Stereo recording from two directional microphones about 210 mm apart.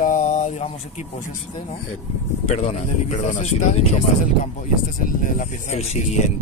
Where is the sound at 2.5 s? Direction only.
35° left (ahead or behind).